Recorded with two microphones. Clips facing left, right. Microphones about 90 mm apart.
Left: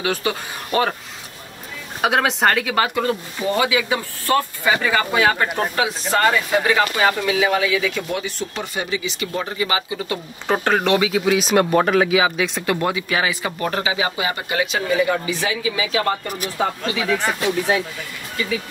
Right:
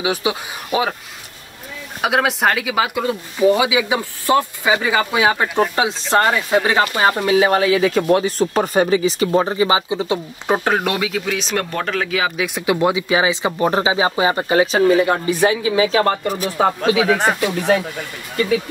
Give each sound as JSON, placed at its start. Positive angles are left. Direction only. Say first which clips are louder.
{"t": 0.0, "sound": "speech", "louder": "right 2 dB", "side_deg": -10}
{"t": 2.0, "sound": "speech", "louder": "right 1 dB", "side_deg": 0}
{"t": 5.8, "sound": "speech", "louder": "left 1 dB", "side_deg": -25}
{"t": 11.0, "sound": "speech", "louder": "left 4 dB", "side_deg": 5}
{"t": 12.5, "sound": "speech", "louder": "right 4 dB", "side_deg": -15}
{"t": 15.2, "sound": "speech", "louder": "right 6 dB", "side_deg": -50}
{"t": 16.5, "sound": "speech", "louder": "right 7 dB", "side_deg": -50}